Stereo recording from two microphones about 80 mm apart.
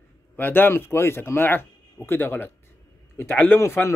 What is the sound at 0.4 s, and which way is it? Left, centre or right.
Speech, left.